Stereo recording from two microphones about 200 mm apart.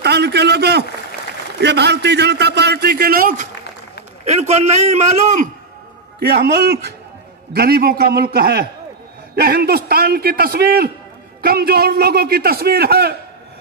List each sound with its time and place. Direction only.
0.0 s a sound: 55° right (ahead or behind)
1.6 s a man's voice: 60° right (ahead or behind)
4.2 s a man's voice: 30° right (ahead or behind)
6.1 s a man's voice: 55° right (ahead or behind)